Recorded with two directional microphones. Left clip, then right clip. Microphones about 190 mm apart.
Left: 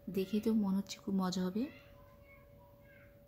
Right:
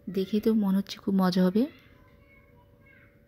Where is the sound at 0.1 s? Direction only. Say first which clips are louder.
Right 9 dB; 20° right (ahead or behind).